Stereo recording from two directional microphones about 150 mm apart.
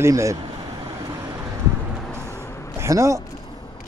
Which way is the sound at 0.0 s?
20° right (ahead or behind).